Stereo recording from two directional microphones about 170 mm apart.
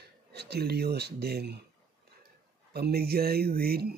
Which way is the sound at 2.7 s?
65° right (ahead or behind).